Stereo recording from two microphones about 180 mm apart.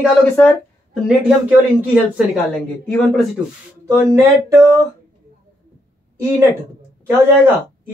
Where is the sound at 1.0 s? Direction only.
5° right (ahead or behind).